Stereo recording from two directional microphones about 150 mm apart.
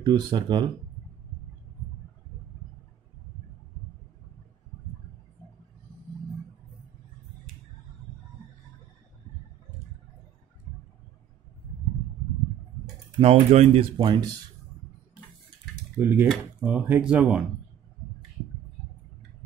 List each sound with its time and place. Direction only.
0.0 s speech: 30° right (ahead or behind)
13.2 s speech: 45° right (ahead or behind)
13.9 s speech: 30° right (ahead or behind)
16.0 s speech: 10° right (ahead or behind)